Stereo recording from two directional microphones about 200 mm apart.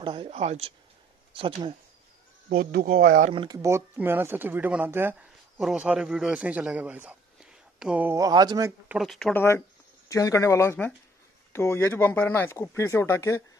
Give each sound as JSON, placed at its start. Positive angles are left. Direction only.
{"t": 0.0, "sound": "speech", "side_deg": -25}
{"t": 2.5, "sound": "speech", "side_deg": -45}
{"t": 3.3, "sound": "a man's voice", "side_deg": -20}
{"t": 8.9, "sound": "a man's voice", "side_deg": 0}
{"t": 10.0, "sound": "speech", "side_deg": 15}